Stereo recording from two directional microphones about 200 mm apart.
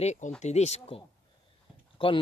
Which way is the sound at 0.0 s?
35° left (ahead or behind).